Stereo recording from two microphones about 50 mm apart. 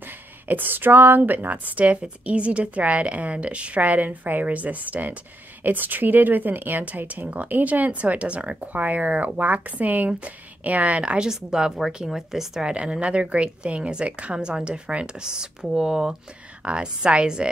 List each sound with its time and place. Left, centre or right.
0.5 s speech: right
11.2 s speech: centre
13.0 s a woman's voice: right